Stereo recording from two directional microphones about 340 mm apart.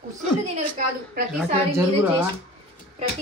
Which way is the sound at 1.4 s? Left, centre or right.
Centre.